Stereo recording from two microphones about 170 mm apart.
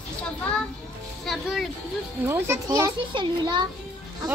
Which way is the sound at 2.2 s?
15° right (ahead or behind).